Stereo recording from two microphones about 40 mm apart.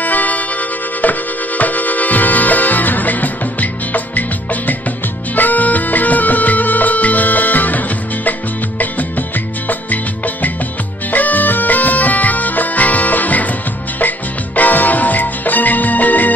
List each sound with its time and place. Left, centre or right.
0.0 s music: left